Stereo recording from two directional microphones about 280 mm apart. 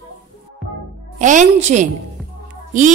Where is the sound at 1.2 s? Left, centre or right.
Right.